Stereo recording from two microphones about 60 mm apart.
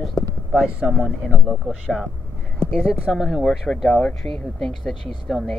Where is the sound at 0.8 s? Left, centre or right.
Centre.